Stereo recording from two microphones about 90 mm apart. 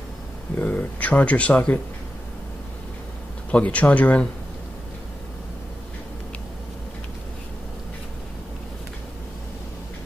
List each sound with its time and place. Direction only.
0.6 s speech: 15° left (ahead or behind)
3.5 s speech: 15° left (ahead or behind)